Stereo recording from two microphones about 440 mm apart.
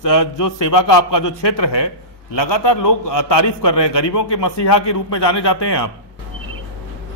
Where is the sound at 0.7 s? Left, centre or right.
Left.